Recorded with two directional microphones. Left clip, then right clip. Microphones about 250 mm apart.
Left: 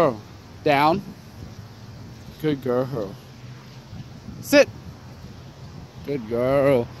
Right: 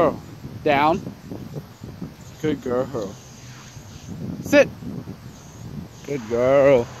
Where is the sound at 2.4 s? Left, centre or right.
Centre.